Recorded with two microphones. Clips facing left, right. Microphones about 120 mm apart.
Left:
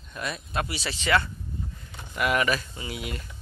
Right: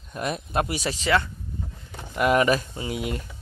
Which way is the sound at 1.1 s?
15° right (ahead or behind).